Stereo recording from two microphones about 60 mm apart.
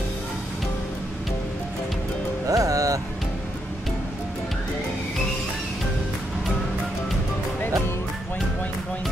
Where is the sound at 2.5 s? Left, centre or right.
Right.